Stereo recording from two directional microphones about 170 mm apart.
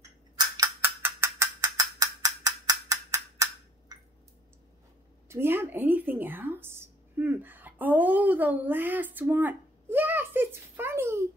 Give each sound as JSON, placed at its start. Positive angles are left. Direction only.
{"t": 0.6, "sound": "mechanisms", "side_deg": -15}
{"t": 3.9, "sound": "drip", "side_deg": -25}
{"t": 5.3, "sound": "a woman's voice", "side_deg": -15}